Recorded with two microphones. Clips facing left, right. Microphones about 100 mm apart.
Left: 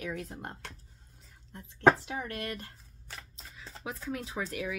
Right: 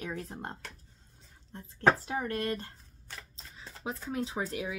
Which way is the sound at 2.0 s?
35° right (ahead or behind).